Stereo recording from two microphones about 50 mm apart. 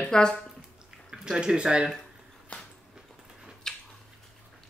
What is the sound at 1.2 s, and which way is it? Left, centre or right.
Speech, centre.